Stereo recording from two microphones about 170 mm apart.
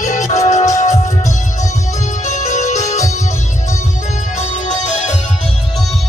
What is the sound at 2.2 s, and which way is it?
Music, 45° left (ahead or behind).